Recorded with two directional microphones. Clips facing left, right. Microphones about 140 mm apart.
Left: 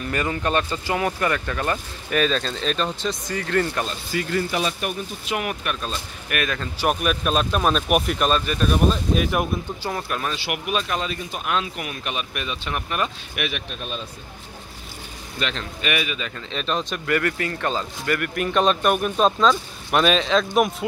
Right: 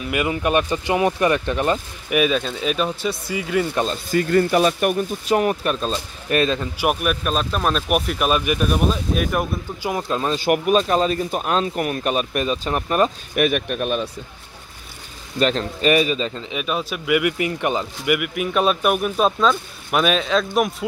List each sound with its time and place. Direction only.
0.0 s speech: 10° right (ahead or behind)
4.1 s speech: 50° right (ahead or behind)
5.3 s speech: 35° right (ahead or behind)
6.6 s speech: 10° right (ahead or behind)
9.8 s speech: 20° right (ahead or behind)
10.3 s speech: 40° right (ahead or behind); by 14.0 s 60° right (ahead or behind)
15.3 s speech: 40° right (ahead or behind)
16.4 s speech: 10° right (ahead or behind)